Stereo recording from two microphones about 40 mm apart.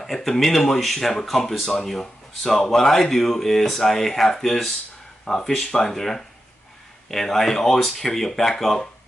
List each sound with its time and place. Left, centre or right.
0.0 s speech: centre